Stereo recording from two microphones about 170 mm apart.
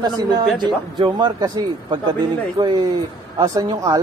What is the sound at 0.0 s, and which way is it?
Speech, 25° right (ahead or behind).